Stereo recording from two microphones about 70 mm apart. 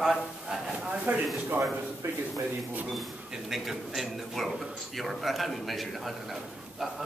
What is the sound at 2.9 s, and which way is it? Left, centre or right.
Speech, centre.